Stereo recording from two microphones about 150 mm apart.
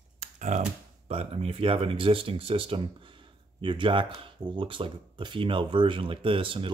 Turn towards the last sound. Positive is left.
turn(degrees=-35)  # may be behind; listen again after turning